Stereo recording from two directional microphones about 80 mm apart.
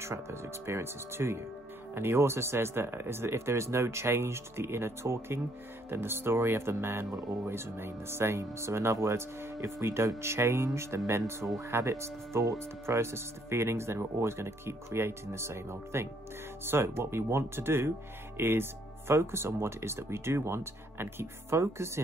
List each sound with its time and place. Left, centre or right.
0.0 s speech: right